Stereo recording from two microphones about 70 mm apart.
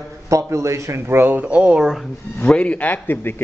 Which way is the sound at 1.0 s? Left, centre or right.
Right.